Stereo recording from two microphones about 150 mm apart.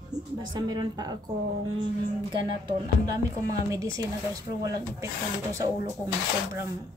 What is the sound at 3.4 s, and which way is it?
Speech, 20° right (ahead or behind).